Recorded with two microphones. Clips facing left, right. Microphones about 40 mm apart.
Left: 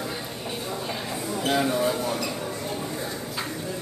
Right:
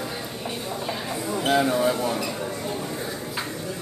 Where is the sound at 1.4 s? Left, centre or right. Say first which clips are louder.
Right 3 dB; centre.